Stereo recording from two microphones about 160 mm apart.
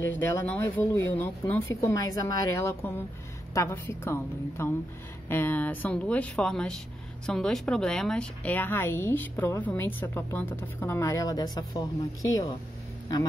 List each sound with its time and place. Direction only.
0.0 s speech: 15° left (ahead or behind)